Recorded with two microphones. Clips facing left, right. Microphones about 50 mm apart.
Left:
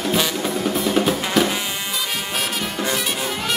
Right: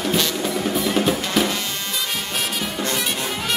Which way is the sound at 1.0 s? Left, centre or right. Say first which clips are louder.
Left 2 dB; centre.